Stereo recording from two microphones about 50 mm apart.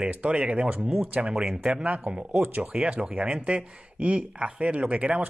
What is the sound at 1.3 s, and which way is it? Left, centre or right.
Speech, centre.